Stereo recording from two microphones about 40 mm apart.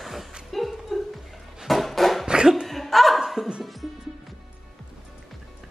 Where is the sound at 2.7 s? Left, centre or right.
Centre.